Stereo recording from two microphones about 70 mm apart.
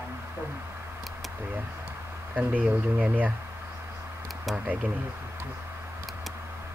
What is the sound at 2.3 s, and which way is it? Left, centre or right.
Speech, right.